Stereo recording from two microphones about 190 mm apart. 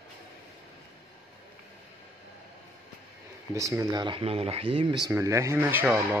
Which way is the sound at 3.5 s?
15° right (ahead or behind).